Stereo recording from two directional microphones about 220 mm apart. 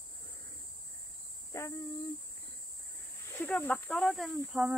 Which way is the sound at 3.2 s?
10° left (ahead or behind).